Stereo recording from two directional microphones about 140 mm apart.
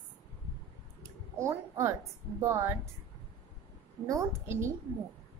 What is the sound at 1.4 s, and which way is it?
A woman's voice, 20° right (ahead or behind).